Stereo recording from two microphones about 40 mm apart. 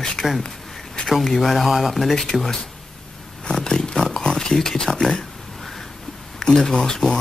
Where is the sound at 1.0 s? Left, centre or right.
Centre.